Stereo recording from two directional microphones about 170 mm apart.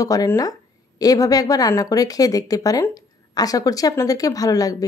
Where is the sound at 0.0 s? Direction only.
20° left (ahead or behind).